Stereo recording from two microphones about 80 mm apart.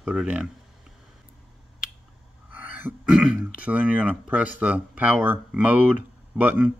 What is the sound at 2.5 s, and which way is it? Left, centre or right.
Throat clearing, right.